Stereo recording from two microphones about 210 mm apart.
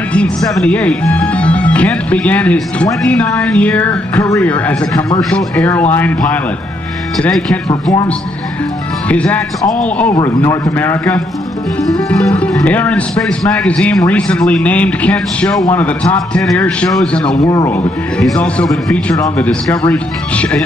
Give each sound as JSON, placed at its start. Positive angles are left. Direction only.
{"t": 0.1, "sound": "a man's voice", "side_deg": 5}
{"t": 7.2, "sound": "speech", "side_deg": 5}
{"t": 9.1, "sound": "a man's voice", "side_deg": 5}
{"t": 17.5, "sound": "a man's voice", "side_deg": 15}
{"t": 18.2, "sound": "speech", "side_deg": 5}